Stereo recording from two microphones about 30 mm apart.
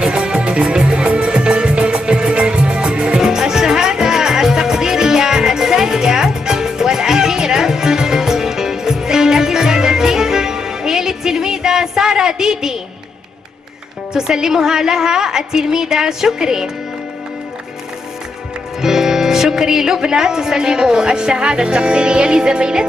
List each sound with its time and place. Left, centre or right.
0.0 s music: right
1.0 s music: right
3.2 s music: centre
14.1 s speech: right
18.8 s speech: centre